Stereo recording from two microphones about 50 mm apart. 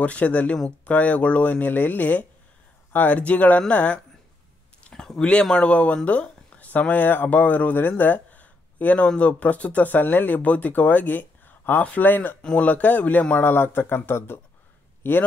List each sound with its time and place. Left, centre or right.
0.0 s speech: left
4.9 s a sound: centre
5.2 s speech: centre; by 7.9 s left
8.0 s a sound: left
9.0 s speech: left
12.4 s speech: left
13.4 s speech: left